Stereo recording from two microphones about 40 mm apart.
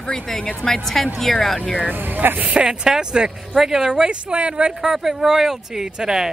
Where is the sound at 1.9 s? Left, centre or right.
Right.